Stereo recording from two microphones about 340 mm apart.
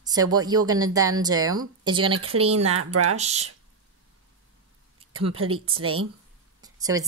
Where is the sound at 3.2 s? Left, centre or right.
Centre.